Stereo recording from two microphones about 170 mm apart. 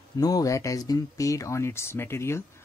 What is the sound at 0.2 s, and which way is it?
Speech, 20° left (ahead or behind).